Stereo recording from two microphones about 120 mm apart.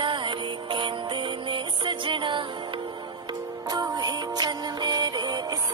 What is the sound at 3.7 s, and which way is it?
Music, 30° right (ahead or behind).